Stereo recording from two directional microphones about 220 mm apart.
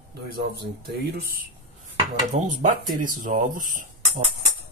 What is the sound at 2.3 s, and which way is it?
Speech, 35° right (ahead or behind).